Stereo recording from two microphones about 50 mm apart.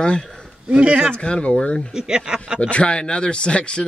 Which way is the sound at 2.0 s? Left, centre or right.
Centre.